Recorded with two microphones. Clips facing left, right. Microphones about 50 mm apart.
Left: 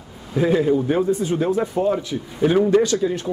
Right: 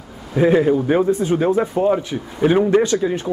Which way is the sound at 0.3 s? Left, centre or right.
Right.